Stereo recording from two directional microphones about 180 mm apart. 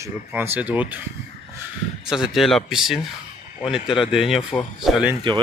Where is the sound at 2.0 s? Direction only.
5° right (ahead or behind).